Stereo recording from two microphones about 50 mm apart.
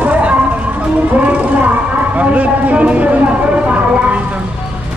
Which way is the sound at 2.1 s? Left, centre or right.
Right.